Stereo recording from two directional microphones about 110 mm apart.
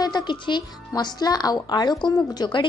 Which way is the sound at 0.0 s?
40° left (ahead or behind).